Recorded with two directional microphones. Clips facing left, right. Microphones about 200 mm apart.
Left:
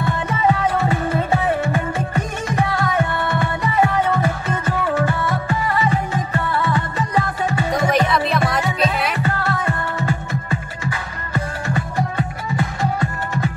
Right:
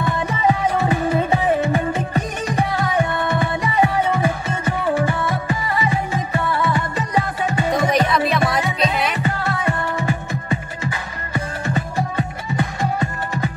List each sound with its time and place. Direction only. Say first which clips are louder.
0.3 s music: left 1 dB; 15° right (ahead or behind)
7.9 s music: even; centre (ahead or behind)
9.2 s music: even; 15° right (ahead or behind)